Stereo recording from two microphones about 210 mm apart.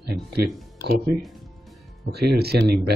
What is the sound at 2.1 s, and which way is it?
Speech, 50° right (ahead or behind).